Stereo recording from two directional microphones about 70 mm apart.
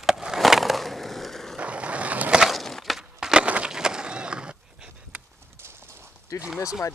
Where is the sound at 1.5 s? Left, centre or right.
Centre.